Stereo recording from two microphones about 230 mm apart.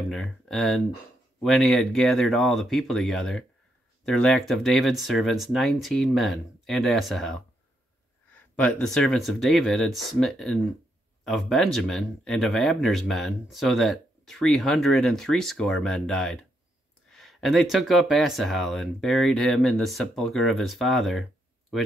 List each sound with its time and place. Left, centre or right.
0.1 s speech: centre
8.5 s speech: centre